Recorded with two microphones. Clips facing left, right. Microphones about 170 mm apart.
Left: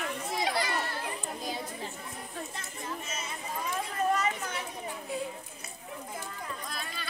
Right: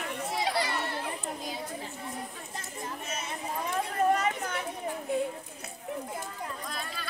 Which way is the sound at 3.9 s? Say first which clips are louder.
Right 3 dB; 55° right (ahead or behind).